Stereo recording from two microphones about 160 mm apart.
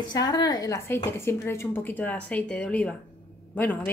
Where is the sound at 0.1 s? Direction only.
25° left (ahead or behind).